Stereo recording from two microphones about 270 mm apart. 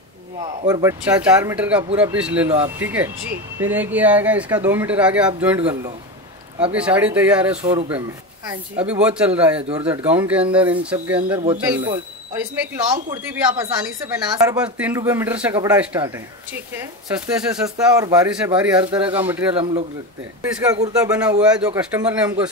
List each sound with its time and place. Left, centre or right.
0.4 s speech: centre
9.6 s speech: right
9.8 s speech: centre
20.7 s speech: centre